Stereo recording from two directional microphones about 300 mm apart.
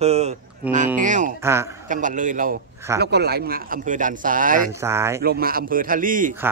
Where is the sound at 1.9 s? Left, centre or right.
Right.